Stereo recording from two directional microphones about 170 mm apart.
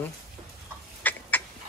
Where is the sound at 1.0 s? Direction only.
10° left (ahead or behind).